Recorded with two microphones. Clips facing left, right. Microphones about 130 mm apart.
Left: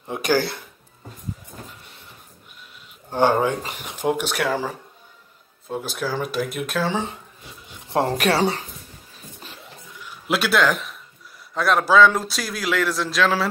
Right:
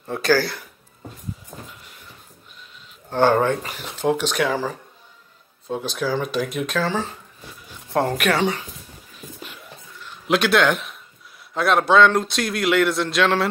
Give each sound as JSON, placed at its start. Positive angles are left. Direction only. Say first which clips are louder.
{"t": 0.0, "sound": "speech", "louder": "right 2 dB", "side_deg": 15}
{"t": 3.1, "sound": "speech", "louder": "right 1 dB", "side_deg": 15}
{"t": 8.2, "sound": "speech", "louder": "left 1 dB", "side_deg": 35}
{"t": 9.1, "sound": "a sound", "louder": "right 4 dB", "side_deg": 35}
{"t": 9.9, "sound": "a sound", "louder": "right 3 dB", "side_deg": 5}
{"t": 11.5, "sound": "speech", "louder": "right 1 dB", "side_deg": 0}